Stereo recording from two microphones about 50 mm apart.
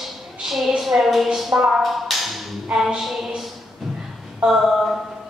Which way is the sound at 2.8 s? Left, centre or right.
Centre.